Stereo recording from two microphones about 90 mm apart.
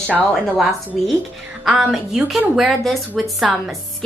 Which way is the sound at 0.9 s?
Centre (ahead or behind).